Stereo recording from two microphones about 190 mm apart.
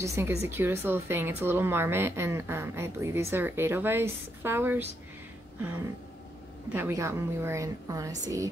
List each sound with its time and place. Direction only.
0.0 s speech: 15° right (ahead or behind)